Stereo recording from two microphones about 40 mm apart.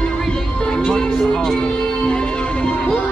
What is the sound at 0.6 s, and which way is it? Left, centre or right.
Music, left.